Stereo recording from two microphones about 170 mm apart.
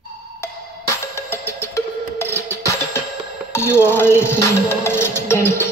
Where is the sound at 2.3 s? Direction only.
15° left (ahead or behind).